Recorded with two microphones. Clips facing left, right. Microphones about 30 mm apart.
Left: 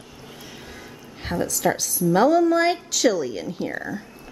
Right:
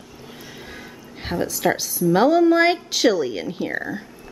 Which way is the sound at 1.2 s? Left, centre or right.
Centre.